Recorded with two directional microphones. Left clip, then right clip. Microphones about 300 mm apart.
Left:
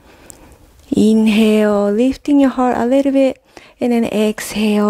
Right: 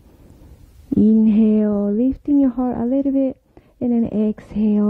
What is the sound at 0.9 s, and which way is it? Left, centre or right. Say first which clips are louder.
Speech: left 3 dB; left.